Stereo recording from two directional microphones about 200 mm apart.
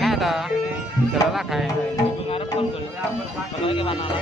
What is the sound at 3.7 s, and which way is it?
Speech, 25° left (ahead or behind).